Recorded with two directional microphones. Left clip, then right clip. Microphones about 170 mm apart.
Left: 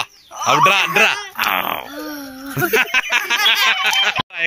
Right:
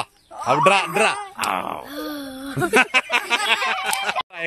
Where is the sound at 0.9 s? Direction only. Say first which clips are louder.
Left 5 dB; 5° right (ahead or behind).